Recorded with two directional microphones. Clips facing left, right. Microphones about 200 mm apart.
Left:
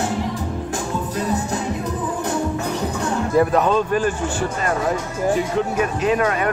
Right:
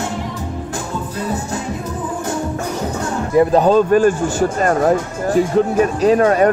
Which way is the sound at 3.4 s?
30° right (ahead or behind).